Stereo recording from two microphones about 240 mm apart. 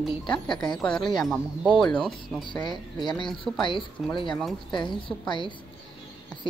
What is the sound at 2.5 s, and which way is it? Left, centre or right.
Speech, centre.